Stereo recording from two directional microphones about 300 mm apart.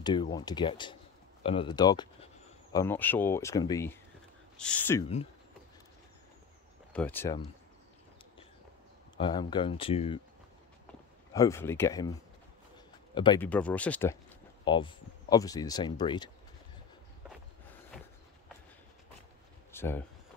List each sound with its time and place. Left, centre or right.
0.0 s speech: centre
6.9 s speech: centre
9.1 s speech: centre
11.3 s speech: centre
14.6 s speech: centre
19.7 s a sound: centre